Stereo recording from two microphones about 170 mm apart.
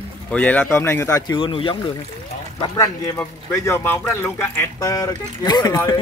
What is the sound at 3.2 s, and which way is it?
Speech, 15° left (ahead or behind).